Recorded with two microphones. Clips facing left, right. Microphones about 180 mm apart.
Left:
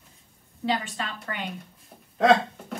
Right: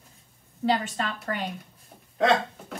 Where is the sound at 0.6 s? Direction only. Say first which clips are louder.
Right 3 dB; 45° right (ahead or behind).